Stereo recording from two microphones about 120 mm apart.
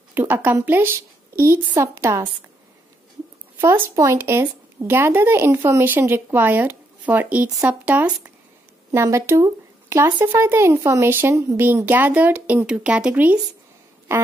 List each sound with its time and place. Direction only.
0.1 s a woman's voice: 15° right (ahead or behind)
3.6 s speech: 20° right (ahead or behind)